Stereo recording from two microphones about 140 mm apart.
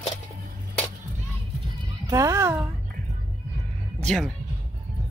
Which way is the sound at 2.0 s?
25° right (ahead or behind).